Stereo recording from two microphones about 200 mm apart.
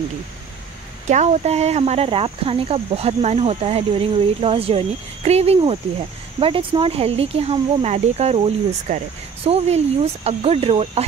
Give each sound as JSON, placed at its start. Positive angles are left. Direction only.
{"t": 1.0, "sound": "speech", "side_deg": -35}